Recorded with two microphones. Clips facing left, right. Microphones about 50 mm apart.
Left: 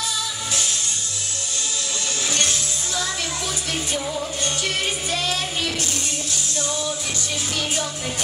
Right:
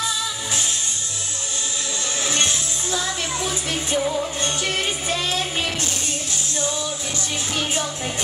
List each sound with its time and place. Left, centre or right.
2.2 s music: right